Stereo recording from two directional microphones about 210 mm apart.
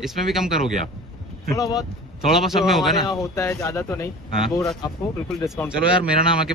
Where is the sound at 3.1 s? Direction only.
15° left (ahead or behind).